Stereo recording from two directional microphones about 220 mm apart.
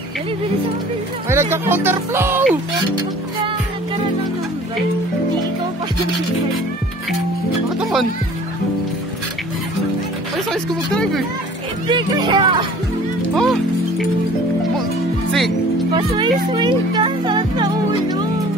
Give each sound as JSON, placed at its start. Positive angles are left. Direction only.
{"t": 1.3, "sound": "speech", "side_deg": -10}
{"t": 10.3, "sound": "speech", "side_deg": 0}
{"t": 11.9, "sound": "speech", "side_deg": -20}
{"t": 13.3, "sound": "music", "side_deg": 0}
{"t": 16.2, "sound": "speech", "side_deg": -20}